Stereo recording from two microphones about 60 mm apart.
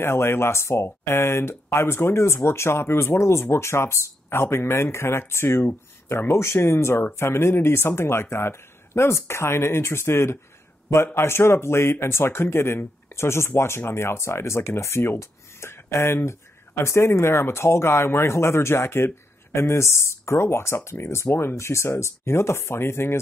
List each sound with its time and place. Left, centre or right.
0.0 s speech: left
21.5 s speech: left